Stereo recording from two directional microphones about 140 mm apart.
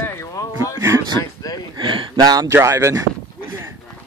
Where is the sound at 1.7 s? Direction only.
35° right (ahead or behind).